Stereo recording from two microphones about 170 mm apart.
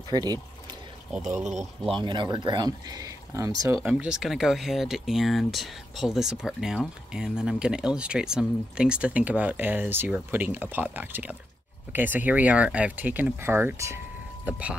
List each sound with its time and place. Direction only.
0.1 s speech: 25° right (ahead or behind)
1.4 s speech: 45° right (ahead or behind)
2.0 s speech: 25° right (ahead or behind)
3.8 s speech: 5° right (ahead or behind)